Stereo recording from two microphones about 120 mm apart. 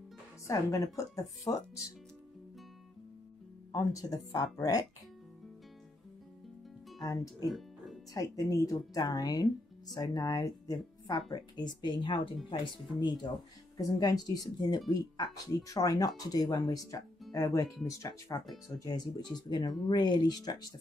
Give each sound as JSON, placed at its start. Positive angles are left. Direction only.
{"t": 0.5, "sound": "speech", "side_deg": 25}
{"t": 3.7, "sound": "speech", "side_deg": 30}
{"t": 7.0, "sound": "speech", "side_deg": 30}
{"t": 7.4, "sound": "music", "side_deg": 0}
{"t": 8.1, "sound": "speech", "side_deg": 30}